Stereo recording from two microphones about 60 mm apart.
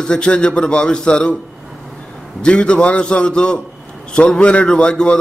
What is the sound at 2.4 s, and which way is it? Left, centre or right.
A man's voice, centre.